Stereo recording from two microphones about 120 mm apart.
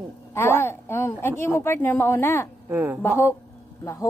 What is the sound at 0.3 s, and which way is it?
A woman's voice, 20° left (ahead or behind).